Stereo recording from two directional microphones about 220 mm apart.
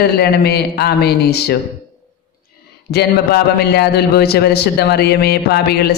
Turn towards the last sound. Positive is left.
turn(degrees=45)  # may be behind; listen again after turning